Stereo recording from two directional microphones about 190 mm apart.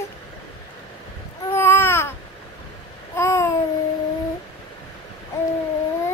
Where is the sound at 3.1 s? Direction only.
15° left (ahead or behind).